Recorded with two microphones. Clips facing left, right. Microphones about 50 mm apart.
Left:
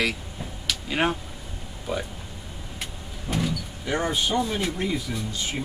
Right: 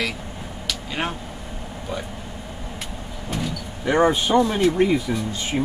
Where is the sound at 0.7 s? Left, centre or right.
Centre.